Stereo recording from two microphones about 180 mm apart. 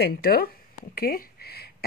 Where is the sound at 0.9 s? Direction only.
55° left (ahead or behind).